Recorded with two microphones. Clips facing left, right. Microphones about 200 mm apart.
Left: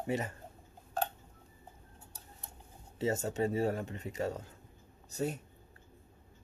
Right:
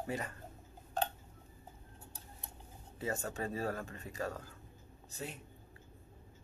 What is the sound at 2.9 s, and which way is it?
Speech, 25° left (ahead or behind).